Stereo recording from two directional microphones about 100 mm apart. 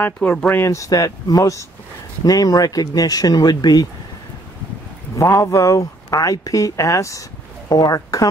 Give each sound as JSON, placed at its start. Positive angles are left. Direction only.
{"t": 0.0, "sound": "speech", "side_deg": 15}
{"t": 0.6, "sound": "speech", "side_deg": 30}
{"t": 5.1, "sound": "speech", "side_deg": 30}